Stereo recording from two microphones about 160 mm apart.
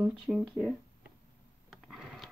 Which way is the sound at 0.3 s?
5° right (ahead or behind).